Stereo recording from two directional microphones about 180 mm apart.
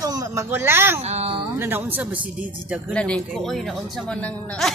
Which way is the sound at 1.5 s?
10° right (ahead or behind).